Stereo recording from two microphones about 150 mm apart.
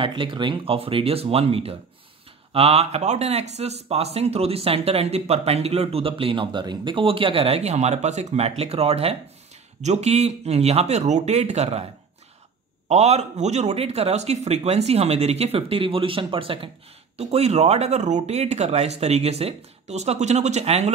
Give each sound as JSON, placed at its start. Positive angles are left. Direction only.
{"t": 0.0, "sound": "speech", "side_deg": -35}
{"t": 12.8, "sound": "speech", "side_deg": -45}